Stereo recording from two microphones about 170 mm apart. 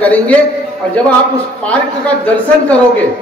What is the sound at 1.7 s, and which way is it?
Speech, 10° left (ahead or behind).